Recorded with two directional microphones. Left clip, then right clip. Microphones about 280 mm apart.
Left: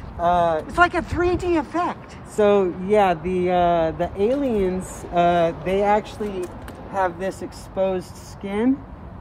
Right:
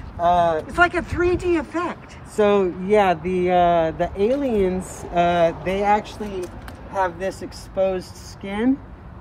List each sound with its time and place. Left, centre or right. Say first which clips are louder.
0.2 s speech: right 1 dB; centre